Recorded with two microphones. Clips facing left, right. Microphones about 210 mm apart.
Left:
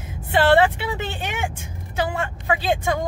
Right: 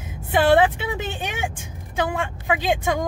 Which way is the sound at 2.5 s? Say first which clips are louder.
Even; 15° right (ahead or behind).